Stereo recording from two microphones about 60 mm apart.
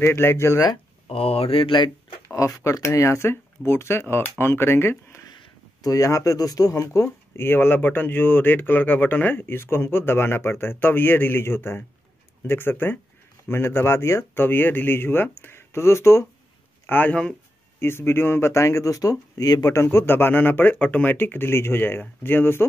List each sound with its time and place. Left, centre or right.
0.0 s speech: left
2.2 s speech: left
5.8 s speech: left
7.3 s speech: left
16.8 s speech: left
17.1 s speech: centre
17.7 s speech: left
19.7 s speech: left